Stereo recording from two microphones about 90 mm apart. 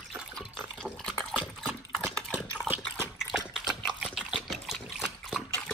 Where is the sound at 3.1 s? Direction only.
5° right (ahead or behind).